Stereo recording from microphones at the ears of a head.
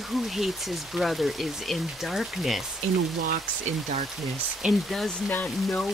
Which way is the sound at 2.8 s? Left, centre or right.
Right.